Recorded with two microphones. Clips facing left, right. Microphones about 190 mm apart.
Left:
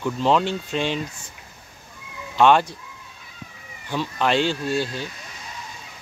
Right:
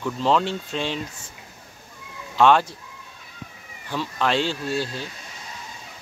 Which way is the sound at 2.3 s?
5° left (ahead or behind).